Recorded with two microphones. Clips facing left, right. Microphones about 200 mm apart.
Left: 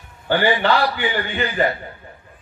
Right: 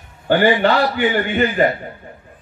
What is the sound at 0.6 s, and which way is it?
A man's voice, 45° right (ahead or behind).